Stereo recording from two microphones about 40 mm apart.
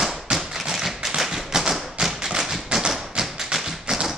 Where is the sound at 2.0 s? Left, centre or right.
Centre.